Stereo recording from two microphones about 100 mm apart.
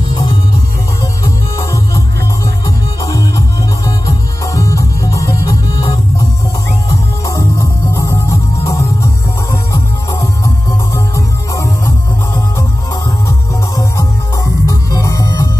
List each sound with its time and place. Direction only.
0.1 s music: 60° left (ahead or behind)
1.2 s music: 35° left (ahead or behind)
11.1 s music: 30° left (ahead or behind)
13.7 s music: 35° left (ahead or behind)